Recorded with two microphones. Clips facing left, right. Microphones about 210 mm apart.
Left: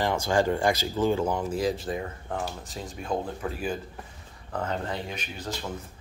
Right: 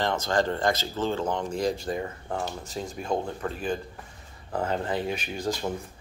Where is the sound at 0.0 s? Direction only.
10° left (ahead or behind).